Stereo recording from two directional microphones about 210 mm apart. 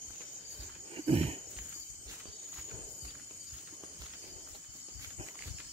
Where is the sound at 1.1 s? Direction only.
30° right (ahead or behind).